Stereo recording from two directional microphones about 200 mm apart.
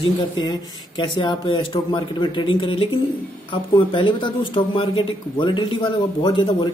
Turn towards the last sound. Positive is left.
turn(degrees=25)  # may be behind; listen again after turning